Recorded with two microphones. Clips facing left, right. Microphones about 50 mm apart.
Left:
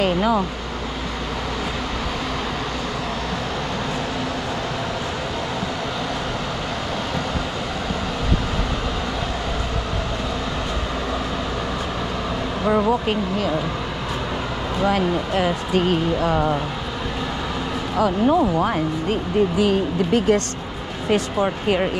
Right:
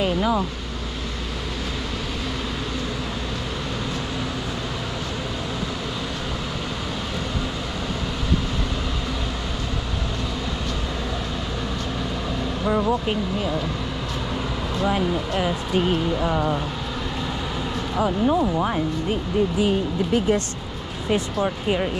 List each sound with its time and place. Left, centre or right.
17.9 s speech: left
21.1 s speech: left